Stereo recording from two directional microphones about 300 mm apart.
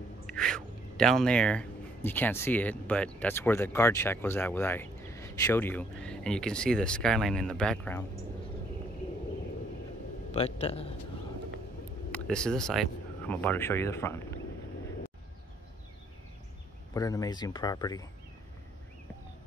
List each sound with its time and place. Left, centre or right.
0.3 s a sound: centre
2.0 s speech: centre
10.3 s a man's voice: centre
12.1 s speech: centre
16.9 s speech: centre